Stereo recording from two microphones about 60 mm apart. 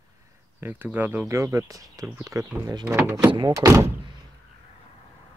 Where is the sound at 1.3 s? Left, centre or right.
Right.